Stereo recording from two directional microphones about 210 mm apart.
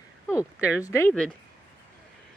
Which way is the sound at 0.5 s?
5° right (ahead or behind).